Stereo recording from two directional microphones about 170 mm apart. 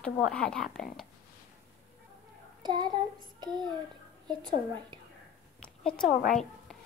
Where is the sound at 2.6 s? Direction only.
25° right (ahead or behind).